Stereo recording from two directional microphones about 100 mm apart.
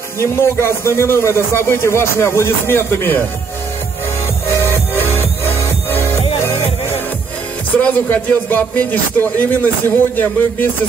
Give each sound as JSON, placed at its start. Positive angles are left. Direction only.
{"t": 0.2, "sound": "speech", "side_deg": 25}
{"t": 4.6, "sound": "music", "side_deg": 25}
{"t": 7.7, "sound": "speech", "side_deg": 15}